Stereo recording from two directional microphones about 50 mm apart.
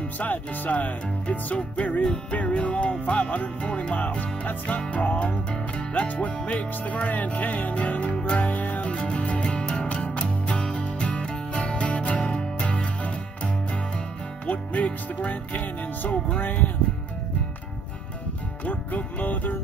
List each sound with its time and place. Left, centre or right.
0.2 s music: left
2.3 s speech: left
8.9 s music: left
14.4 s music: left
18.7 s music: left